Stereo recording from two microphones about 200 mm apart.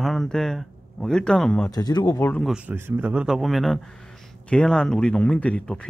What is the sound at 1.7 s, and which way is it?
Speech, 20° left (ahead or behind).